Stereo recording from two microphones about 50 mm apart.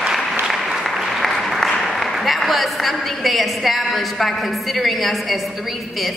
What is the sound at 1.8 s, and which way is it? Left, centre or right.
A woman's voice, centre.